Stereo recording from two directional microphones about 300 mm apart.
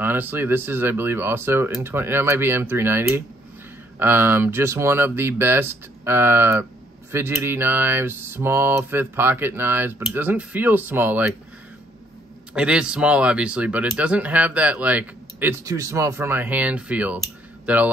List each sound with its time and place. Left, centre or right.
0.0 s mantra: centre
12.5 s speech: centre